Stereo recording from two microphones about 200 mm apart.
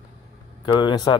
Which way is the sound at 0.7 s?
20° left (ahead or behind).